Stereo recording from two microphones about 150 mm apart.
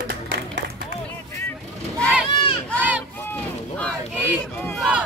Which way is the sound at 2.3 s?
35° left (ahead or behind).